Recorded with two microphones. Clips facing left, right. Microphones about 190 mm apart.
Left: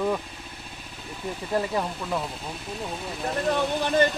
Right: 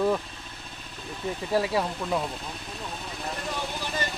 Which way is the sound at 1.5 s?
5° right (ahead or behind).